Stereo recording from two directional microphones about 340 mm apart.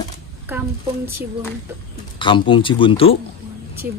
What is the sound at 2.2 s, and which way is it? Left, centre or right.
Speech, centre.